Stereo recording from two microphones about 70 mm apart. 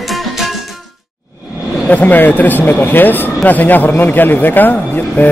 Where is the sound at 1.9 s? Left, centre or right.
Left.